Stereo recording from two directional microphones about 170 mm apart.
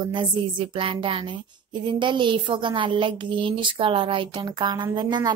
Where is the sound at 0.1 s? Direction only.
30° right (ahead or behind).